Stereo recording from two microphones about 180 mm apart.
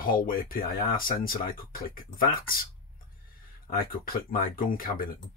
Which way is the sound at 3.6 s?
55° left (ahead or behind).